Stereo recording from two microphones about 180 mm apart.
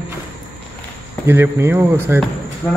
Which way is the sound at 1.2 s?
15° right (ahead or behind).